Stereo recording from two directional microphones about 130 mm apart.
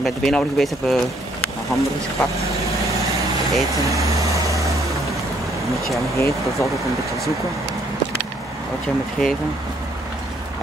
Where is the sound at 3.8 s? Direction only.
25° right (ahead or behind).